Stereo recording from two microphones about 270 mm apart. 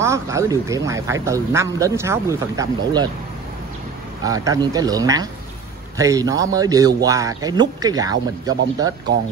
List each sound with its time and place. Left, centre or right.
0.0 s speech: centre
4.2 s speech: centre